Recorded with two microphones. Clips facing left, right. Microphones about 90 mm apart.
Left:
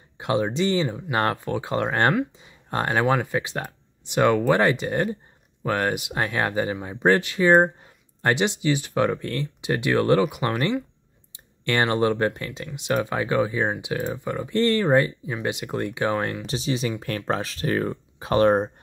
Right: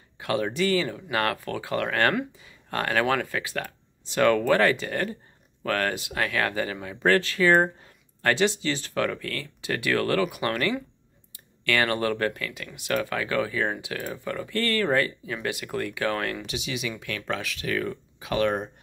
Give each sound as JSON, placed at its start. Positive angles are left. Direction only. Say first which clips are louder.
{"t": 0.2, "sound": "speech", "louder": "left 3 dB", "side_deg": 20}
{"t": 16.4, "sound": "speech", "louder": "left 6 dB", "side_deg": 35}